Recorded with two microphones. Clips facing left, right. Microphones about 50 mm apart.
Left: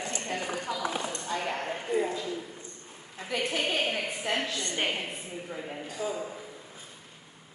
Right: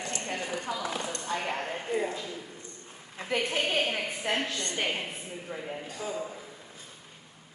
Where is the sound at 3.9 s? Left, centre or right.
Centre.